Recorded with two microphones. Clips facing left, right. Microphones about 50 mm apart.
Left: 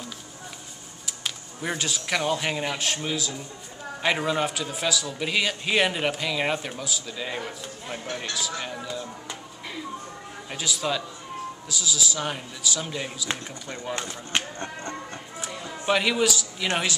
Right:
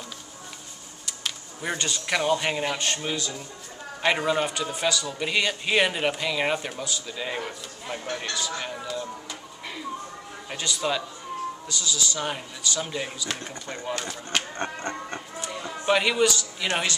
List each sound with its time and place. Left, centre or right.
1.0 s a man's voice: centre
10.5 s a man's voice: centre
13.9 s speech: left
14.6 s music: right
15.8 s a man's voice: centre